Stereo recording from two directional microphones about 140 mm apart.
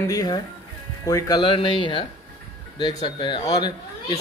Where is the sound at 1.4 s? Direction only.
35° left (ahead or behind).